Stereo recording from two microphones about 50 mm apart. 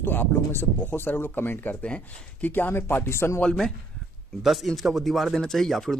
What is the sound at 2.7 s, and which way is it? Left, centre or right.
Speech, left.